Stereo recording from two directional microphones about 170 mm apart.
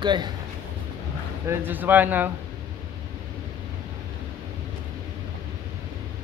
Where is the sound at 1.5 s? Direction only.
10° right (ahead or behind).